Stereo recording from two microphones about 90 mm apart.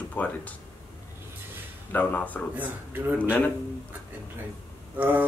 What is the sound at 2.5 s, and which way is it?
Speech, 20° right (ahead or behind).